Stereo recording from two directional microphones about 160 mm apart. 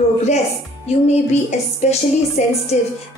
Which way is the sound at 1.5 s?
45° left (ahead or behind).